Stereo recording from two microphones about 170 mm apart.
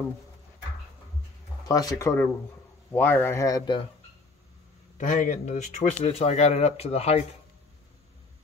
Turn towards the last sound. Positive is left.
turn(degrees=40)  # may be behind; listen again after turning